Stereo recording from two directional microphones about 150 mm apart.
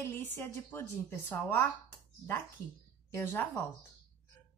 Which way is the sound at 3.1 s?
20° left (ahead or behind).